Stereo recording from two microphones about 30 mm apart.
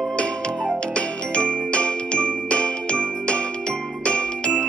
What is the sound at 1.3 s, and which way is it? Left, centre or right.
Jingle, left.